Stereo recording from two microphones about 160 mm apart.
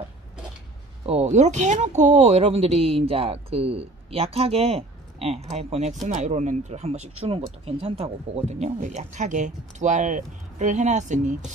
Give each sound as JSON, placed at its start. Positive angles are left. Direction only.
{"t": 1.0, "sound": "speech", "side_deg": -40}